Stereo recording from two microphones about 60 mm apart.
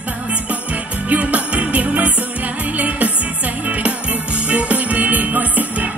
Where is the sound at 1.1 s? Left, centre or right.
Right.